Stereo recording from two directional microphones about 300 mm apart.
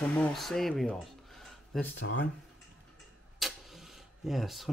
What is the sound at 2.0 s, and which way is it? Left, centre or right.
Speech, left.